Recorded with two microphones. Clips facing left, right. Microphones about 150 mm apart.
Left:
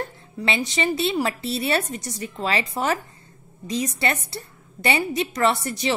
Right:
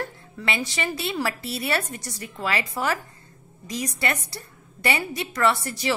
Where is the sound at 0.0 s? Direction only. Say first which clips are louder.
Left 2 dB; 20° left (ahead or behind).